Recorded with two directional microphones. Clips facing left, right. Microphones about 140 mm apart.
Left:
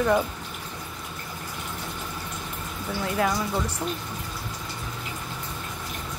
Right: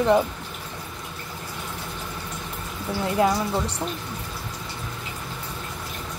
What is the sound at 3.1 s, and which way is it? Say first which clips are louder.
Speech: right 4 dB; 20° right (ahead or behind).